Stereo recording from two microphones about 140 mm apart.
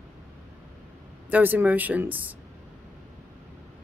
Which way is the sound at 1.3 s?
10° right (ahead or behind).